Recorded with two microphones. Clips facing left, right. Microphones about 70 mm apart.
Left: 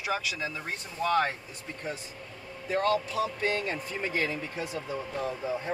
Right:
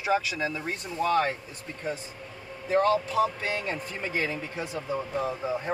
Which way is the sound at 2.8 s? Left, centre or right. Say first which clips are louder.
Even; right.